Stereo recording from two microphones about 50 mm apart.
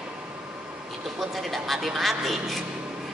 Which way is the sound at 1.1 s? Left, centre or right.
Centre.